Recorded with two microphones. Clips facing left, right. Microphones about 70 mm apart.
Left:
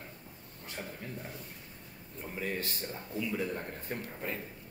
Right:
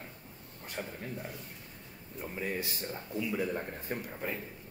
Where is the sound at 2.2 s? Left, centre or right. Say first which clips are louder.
Right 1 dB; centre.